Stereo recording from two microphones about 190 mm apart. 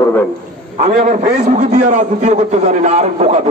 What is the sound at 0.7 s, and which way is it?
A man's voice, 40° right (ahead or behind).